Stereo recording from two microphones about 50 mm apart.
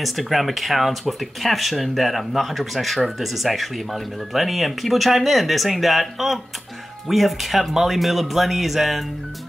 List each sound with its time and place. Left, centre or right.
0.0 s speech: centre